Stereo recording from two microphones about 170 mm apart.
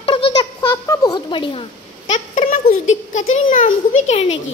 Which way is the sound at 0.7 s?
20° left (ahead or behind).